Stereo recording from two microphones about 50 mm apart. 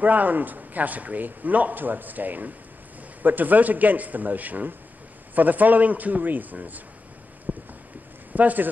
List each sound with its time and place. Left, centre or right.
0.0 s a man's voice: right
7.5 s a sound: right
8.3 s speech: right